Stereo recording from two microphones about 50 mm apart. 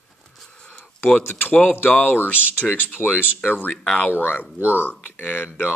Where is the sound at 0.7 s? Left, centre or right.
Left.